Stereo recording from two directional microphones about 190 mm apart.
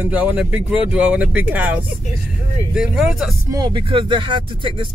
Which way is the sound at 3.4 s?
20° right (ahead or behind).